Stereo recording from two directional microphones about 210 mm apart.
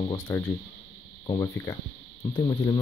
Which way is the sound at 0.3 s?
15° left (ahead or behind).